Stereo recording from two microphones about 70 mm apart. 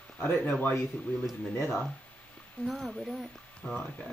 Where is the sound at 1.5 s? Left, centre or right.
Left.